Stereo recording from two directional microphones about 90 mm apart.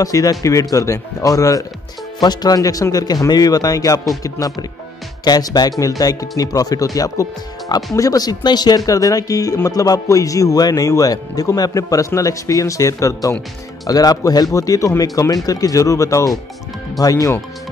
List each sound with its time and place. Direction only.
0.0 s speech: 40° left (ahead or behind)
2.1 s speech: 50° left (ahead or behind)